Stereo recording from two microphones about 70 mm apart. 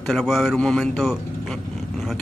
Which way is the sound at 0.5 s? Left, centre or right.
Centre.